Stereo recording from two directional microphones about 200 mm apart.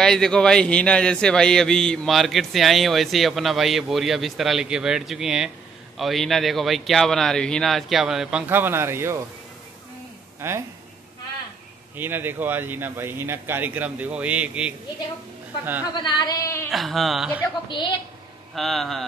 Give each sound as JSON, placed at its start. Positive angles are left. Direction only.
{"t": 0.0, "sound": "speech", "side_deg": 5}
{"t": 10.4, "sound": "speech", "side_deg": -10}
{"t": 12.0, "sound": "speech", "side_deg": -10}
{"t": 15.9, "sound": "speech", "side_deg": 20}
{"t": 16.7, "sound": "speech", "side_deg": 0}
{"t": 17.6, "sound": "speech", "side_deg": 25}
{"t": 18.5, "sound": "speech", "side_deg": 0}